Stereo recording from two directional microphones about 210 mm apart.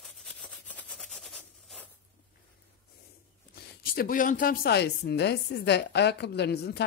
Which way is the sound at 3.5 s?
45° left (ahead or behind).